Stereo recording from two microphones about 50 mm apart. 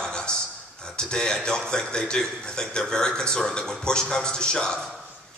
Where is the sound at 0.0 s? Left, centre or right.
Centre.